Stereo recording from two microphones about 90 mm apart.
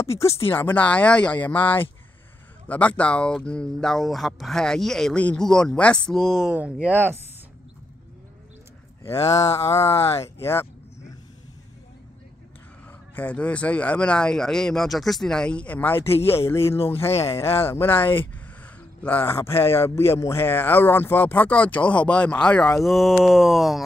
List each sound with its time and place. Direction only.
0.0 s speech: 30° left (ahead or behind)
0.5 s speech: 20° left (ahead or behind)
2.7 s speech: 15° left (ahead or behind); by 6.5 s centre (ahead or behind)
6.5 s speech: 15° right (ahead or behind)
9.0 s speech: 30° left (ahead or behind)
13.1 s speech: 15° left (ahead or behind)
22.8 s speech: centre (ahead or behind)